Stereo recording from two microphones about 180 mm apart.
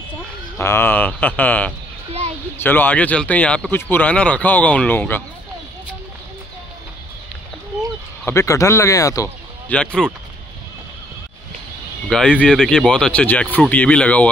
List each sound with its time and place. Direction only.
0.6 s speech: 15° left (ahead or behind)
8.3 s speech: 15° left (ahead or behind)
9.7 s speech: 5° left (ahead or behind)
12.1 s speech: 5° left (ahead or behind)